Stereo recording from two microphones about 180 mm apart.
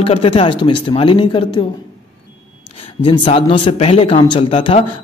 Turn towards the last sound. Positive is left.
turn(degrees=30)  # may be behind; listen again after turning